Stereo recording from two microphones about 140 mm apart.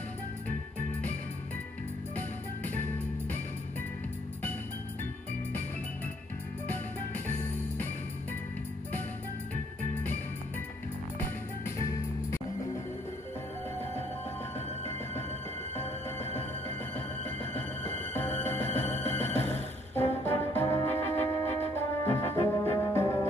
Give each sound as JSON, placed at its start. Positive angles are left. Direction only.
{"t": 2.1, "sound": "music", "side_deg": 15}
{"t": 7.2, "sound": "music", "side_deg": 10}
{"t": 17.9, "sound": "music", "side_deg": 15}